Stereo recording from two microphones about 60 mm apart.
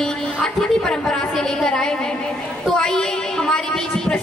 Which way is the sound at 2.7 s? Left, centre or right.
Centre.